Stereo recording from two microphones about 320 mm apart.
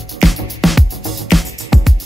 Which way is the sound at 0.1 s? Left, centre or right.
Centre.